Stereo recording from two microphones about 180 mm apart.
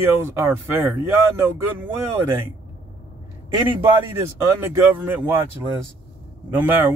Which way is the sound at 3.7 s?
15° right (ahead or behind).